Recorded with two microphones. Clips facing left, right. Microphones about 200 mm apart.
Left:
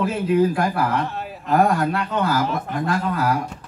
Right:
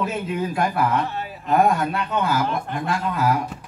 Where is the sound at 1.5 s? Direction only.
20° right (ahead or behind).